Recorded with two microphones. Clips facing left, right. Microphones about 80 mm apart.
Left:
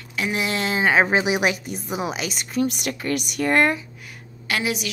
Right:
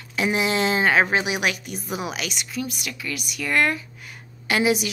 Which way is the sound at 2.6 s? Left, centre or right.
Left.